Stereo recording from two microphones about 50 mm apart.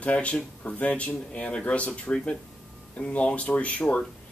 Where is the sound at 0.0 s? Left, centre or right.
Left.